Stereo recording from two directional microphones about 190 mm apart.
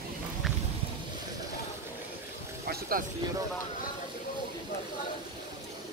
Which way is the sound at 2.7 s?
50° right (ahead or behind).